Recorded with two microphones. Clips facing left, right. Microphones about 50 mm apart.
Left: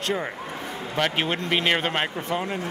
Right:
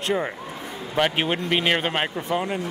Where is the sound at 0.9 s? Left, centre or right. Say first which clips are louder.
Right 2 dB; centre.